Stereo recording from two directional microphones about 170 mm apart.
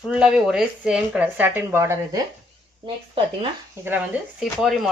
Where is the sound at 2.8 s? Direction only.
30° right (ahead or behind).